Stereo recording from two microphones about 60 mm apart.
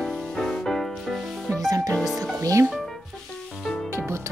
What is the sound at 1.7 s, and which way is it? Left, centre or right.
Music, right.